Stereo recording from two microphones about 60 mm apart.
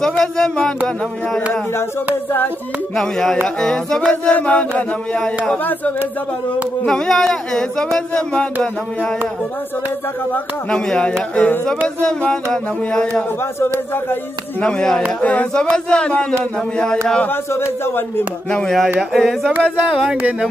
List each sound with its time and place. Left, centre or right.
0.2 s speech: centre
3.0 s a sound: centre
3.4 s speech: centre
4.1 s chant: left
6.9 s speech: centre
10.7 s speech: centre
14.6 s speech: centre
15.1 s chant: left
15.5 s speech: centre
17.3 s speech: left
18.5 s speech: centre
18.9 s a sound: centre
19.9 s speech: centre
20.2 s speech: right